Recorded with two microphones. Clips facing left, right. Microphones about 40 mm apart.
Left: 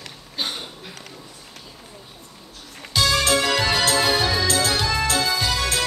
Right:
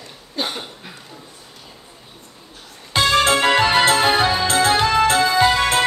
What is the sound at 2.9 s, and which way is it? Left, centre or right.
Music, right.